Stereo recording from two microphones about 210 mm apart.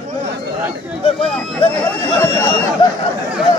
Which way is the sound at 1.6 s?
20° left (ahead or behind).